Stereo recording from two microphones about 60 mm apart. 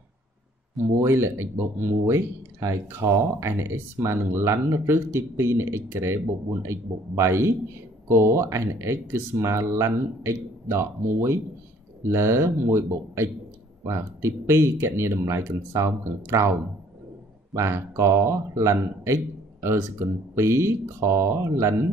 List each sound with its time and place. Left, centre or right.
1.0 s speech: right
17.6 s speech: right